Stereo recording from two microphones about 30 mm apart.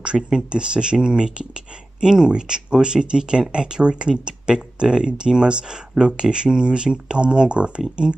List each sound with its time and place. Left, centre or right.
0.0 s speech: right